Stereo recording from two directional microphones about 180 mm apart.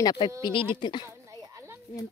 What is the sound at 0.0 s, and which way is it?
Speech, 25° left (ahead or behind).